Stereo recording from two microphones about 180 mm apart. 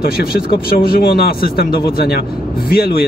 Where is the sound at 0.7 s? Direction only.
50° left (ahead or behind).